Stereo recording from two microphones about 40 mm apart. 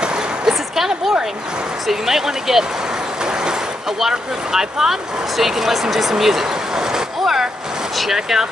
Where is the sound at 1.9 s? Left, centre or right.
Centre.